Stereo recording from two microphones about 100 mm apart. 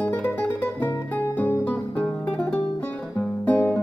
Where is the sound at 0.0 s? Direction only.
15° left (ahead or behind).